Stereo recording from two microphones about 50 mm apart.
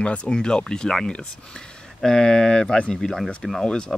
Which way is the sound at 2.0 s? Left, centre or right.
Centre.